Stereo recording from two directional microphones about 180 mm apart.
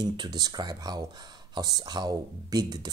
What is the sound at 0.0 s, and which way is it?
Speech, 25° right (ahead or behind).